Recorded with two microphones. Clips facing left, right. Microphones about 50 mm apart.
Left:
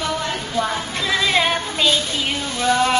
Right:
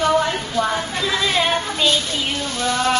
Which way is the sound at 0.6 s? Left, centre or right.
Centre.